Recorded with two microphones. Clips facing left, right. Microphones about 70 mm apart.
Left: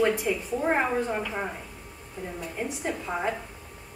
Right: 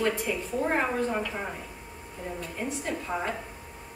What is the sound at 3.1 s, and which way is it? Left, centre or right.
Speech, centre.